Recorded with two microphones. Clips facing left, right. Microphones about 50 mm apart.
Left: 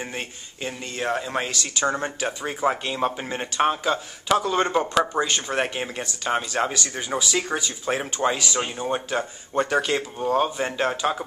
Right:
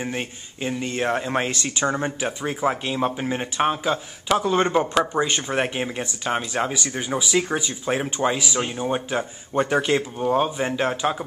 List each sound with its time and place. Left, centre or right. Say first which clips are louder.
0.0 s speech: right 3 dB; centre
0.8 s speech: right 2 dB; right
1.9 s speech: even; centre